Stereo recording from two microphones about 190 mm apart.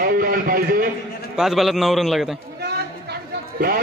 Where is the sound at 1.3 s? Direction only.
Centre (ahead or behind).